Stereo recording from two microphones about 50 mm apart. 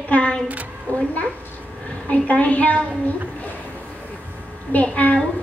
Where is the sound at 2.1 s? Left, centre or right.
Left.